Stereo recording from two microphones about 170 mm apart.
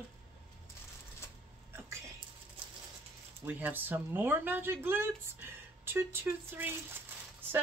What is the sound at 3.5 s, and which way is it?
Speech, 10° right (ahead or behind).